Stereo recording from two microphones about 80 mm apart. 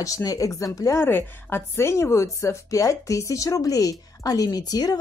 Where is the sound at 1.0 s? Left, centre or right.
Left.